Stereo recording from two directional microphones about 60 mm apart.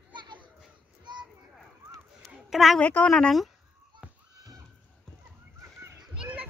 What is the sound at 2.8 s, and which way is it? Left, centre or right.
Speech, left.